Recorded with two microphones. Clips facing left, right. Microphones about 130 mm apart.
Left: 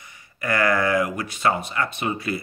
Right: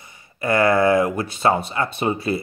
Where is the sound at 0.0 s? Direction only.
30° right (ahead or behind).